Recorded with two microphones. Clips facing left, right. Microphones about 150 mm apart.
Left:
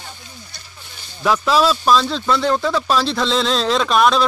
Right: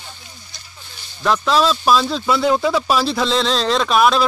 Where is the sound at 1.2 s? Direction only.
5° left (ahead or behind).